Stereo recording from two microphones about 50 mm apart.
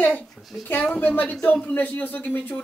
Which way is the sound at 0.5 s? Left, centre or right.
Left.